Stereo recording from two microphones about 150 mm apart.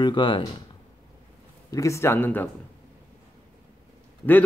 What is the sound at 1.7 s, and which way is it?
Speech, 20° left (ahead or behind).